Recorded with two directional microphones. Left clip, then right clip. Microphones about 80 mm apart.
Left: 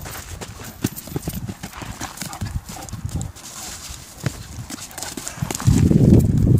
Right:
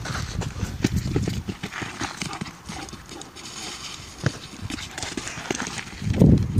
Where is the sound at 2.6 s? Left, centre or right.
Left.